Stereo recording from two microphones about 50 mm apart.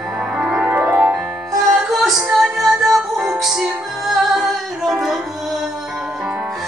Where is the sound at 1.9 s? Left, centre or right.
Centre.